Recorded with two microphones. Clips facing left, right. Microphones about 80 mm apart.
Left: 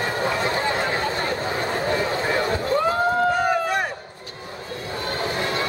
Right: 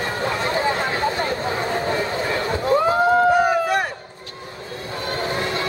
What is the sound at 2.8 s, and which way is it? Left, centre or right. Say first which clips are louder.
Run: right 5 dB; centre.